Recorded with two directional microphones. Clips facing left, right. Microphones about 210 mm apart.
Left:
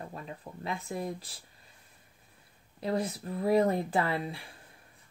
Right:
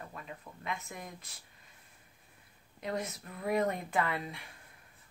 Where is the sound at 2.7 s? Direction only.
30° left (ahead or behind).